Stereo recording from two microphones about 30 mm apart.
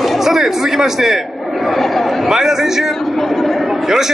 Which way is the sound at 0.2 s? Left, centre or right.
Centre.